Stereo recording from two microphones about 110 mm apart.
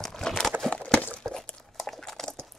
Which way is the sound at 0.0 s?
5° left (ahead or behind).